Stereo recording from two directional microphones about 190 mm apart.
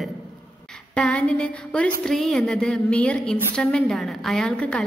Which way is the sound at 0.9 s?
5° left (ahead or behind).